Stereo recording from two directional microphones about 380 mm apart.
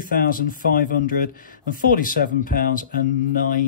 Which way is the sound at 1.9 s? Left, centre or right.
Left.